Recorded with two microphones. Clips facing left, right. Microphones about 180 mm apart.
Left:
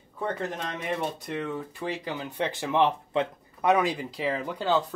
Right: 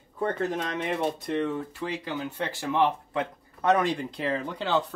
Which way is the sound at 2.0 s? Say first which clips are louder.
Left 1 dB; 20° left (ahead or behind).